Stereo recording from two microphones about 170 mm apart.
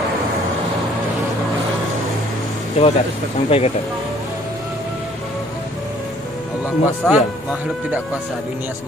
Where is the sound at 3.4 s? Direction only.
35° left (ahead or behind).